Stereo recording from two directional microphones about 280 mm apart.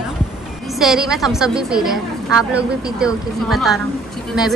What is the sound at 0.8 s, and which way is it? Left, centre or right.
A woman's voice, centre.